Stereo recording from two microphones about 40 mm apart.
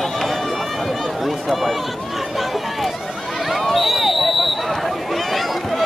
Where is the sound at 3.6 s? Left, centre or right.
Centre.